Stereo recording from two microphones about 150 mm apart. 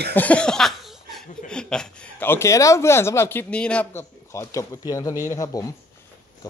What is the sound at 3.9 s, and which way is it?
Speech, 20° left (ahead or behind).